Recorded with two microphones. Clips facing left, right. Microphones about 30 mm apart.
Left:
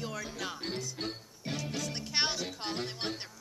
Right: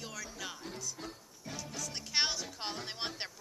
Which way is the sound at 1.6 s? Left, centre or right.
Left.